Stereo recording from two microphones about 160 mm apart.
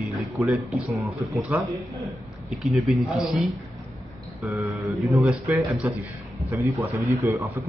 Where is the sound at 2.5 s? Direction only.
Centre (ahead or behind).